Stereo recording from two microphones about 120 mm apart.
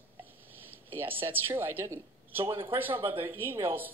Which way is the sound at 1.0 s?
15° right (ahead or behind).